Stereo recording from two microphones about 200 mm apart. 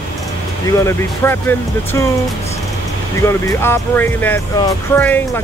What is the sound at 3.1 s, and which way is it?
Speech, 15° left (ahead or behind).